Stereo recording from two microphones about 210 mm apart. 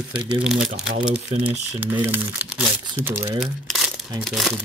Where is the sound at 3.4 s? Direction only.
Centre (ahead or behind).